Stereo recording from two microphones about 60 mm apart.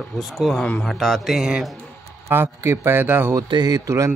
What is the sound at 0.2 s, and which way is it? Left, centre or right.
A man's voice, centre.